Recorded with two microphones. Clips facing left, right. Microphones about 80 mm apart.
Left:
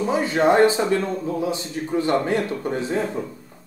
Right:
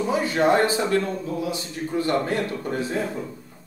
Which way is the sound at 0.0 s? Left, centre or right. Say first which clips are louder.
Left 2 dB; left.